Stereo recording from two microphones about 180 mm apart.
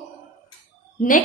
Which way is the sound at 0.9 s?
50° left (ahead or behind).